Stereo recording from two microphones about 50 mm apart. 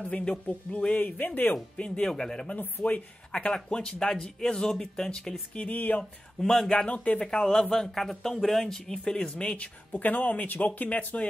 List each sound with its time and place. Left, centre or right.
0.0 s speech: left
2.0 s speech: centre
2.5 s speech: left; by 5.3 s centre
5.5 s speech: left
6.4 s speech: centre
6.7 s speech: left
7.2 s speech: centre; by 11.1 s left